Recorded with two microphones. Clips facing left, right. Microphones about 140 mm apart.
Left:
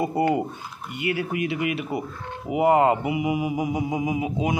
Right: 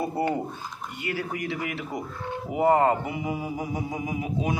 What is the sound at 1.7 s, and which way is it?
Mantra, 10° left (ahead or behind).